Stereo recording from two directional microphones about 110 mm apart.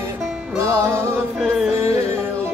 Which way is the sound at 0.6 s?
25° right (ahead or behind).